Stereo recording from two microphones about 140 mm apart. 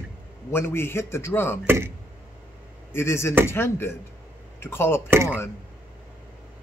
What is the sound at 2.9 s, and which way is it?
Speech, 20° left (ahead or behind).